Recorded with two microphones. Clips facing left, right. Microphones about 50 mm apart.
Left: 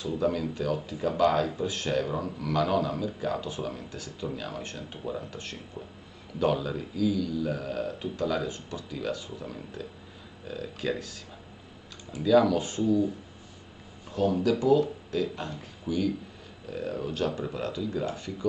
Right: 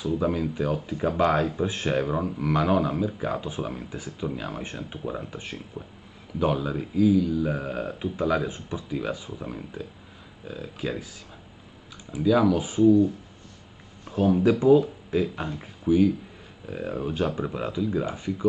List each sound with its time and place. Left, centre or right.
0.0 s speech: centre
12.1 s speech: centre
14.1 s speech: right